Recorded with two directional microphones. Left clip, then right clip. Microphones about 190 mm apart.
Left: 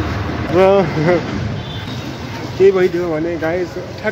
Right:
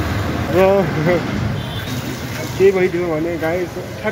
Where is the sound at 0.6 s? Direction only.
25° left (ahead or behind).